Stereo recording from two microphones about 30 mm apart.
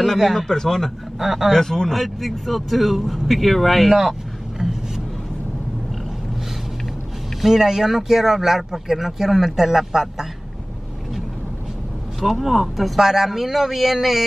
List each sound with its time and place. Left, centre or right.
0.5 s speech: centre
1.2 s speech: centre
1.5 s speech: centre
2.0 s speech: centre
4.6 s vehicle: centre
7.4 s speech: centre
12.2 s speech: centre